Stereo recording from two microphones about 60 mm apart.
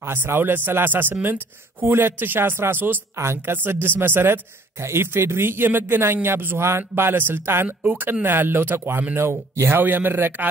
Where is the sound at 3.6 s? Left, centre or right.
Right.